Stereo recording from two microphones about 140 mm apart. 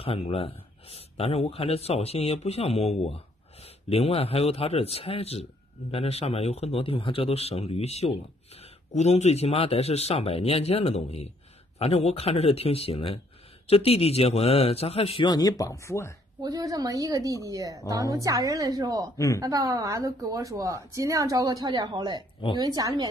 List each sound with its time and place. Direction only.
0.0 s a man's voice: 45° left (ahead or behind)
15.2 s speech: 30° left (ahead or behind)
16.3 s a woman's voice: 25° right (ahead or behind)
19.1 s speech: 25° left (ahead or behind)
19.4 s a woman's voice: 25° right (ahead or behind)